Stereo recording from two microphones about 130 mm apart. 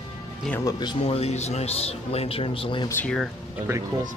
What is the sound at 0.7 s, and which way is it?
Speech, 35° left (ahead or behind).